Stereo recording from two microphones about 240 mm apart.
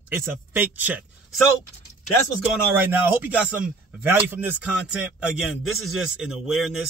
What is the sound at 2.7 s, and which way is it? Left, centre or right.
Speech, centre.